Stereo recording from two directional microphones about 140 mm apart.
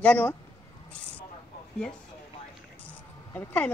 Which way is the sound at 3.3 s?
10° left (ahead or behind).